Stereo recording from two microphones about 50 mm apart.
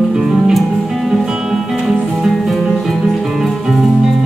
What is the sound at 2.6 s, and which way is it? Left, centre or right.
Music, centre.